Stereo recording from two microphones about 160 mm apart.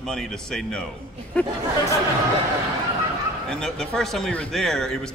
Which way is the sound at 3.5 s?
5° left (ahead or behind).